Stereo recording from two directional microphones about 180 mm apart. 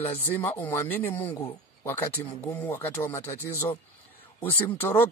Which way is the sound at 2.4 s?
10° left (ahead or behind).